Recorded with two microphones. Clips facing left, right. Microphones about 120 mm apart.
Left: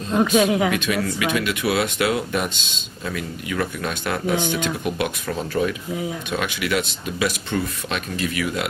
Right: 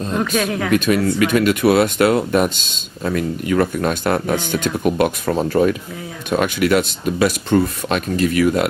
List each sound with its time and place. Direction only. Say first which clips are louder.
0.1 s speech: left 4 dB; 15° left (ahead or behind)
0.7 s speech: right 6 dB; 45° right (ahead or behind)